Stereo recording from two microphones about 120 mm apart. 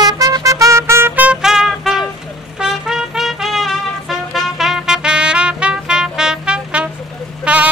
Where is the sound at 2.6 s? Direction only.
5° right (ahead or behind).